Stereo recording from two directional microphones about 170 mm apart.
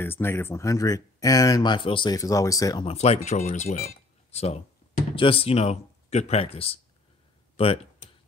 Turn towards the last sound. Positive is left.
turn(degrees=35)  # may be behind; listen again after turning